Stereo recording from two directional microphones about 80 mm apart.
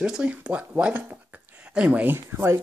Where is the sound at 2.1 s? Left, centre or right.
Right.